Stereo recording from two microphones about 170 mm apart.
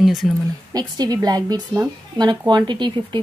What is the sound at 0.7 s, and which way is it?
A woman's voice, 25° right (ahead or behind).